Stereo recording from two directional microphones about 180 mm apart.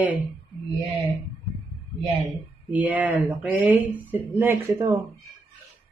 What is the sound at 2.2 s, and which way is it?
Speech, 10° right (ahead or behind).